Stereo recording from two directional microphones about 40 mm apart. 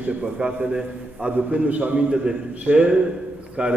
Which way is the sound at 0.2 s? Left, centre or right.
Right.